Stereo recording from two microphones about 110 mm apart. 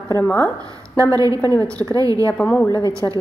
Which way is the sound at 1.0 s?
30° right (ahead or behind).